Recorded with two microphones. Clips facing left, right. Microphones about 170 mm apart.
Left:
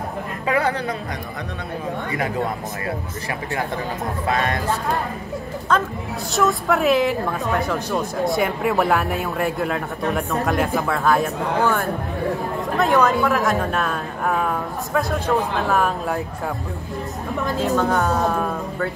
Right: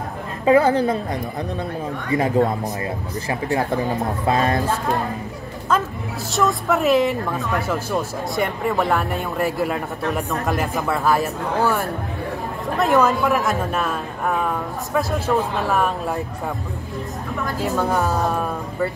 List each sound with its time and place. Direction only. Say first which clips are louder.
0.5 s a woman's voice: right 7 dB; 30° right (ahead or behind)
4.3 s speech: right 3 dB; 30° right (ahead or behind)
5.7 s speech: even; 5° right (ahead or behind)
17.6 s speech: left 1 dB; centre (ahead or behind)